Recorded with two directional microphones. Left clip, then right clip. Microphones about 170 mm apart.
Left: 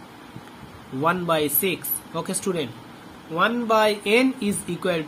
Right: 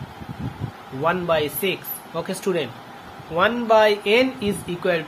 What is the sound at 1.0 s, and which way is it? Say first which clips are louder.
Speech: right 1 dB; 20° left (ahead or behind).